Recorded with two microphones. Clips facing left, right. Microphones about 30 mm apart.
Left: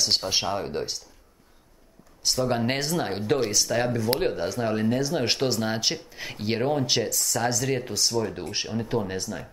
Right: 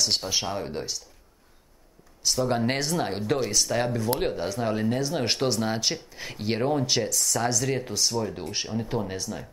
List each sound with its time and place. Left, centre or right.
0.0 s speech: centre
2.4 s speech: centre
6.7 s speech: centre
7.0 s speech: centre